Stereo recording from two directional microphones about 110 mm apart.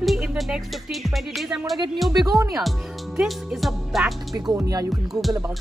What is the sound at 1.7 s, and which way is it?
Speech, 45° right (ahead or behind).